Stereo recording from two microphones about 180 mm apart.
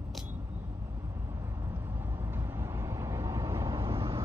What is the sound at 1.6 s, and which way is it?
Vehicle, 15° right (ahead or behind).